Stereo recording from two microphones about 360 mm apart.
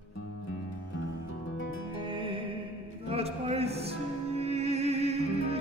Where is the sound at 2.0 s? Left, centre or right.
Centre.